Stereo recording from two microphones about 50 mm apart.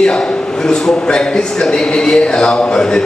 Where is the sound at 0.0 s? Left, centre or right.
Centre.